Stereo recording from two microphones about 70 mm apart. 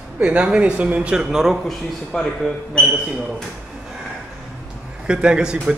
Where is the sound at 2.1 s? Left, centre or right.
Centre.